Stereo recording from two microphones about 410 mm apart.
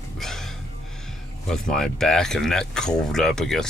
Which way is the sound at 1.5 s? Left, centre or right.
Centre.